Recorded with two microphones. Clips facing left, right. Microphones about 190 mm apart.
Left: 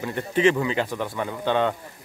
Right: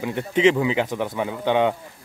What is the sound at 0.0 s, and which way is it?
Speech, 15° right (ahead or behind).